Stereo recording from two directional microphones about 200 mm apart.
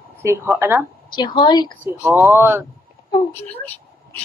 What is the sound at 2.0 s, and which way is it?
Speech, 10° right (ahead or behind).